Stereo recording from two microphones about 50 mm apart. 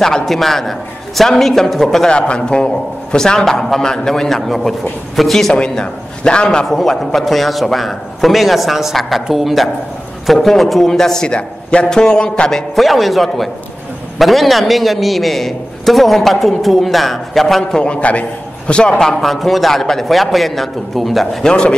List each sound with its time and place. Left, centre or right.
0.0 s a man's voice: centre
2.0 s a man's voice: centre
5.5 s a man's voice: centre
12.4 s a man's voice: centre
17.6 s a man's voice: centre
21.5 s a man's voice: centre